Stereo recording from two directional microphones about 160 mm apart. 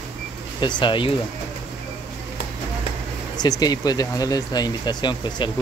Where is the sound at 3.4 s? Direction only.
25° left (ahead or behind).